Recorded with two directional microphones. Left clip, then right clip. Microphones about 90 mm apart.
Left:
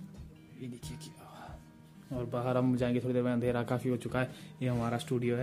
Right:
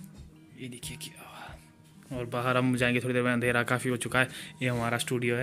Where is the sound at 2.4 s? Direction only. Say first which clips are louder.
Right 5 dB; 5° left (ahead or behind).